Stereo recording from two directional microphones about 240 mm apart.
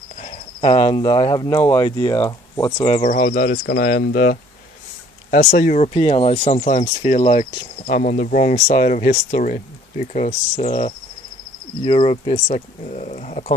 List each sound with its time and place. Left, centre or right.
0.2 s speech: left
2.9 s speech: left